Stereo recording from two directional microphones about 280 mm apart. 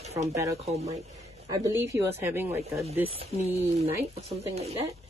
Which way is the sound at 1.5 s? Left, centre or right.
Centre.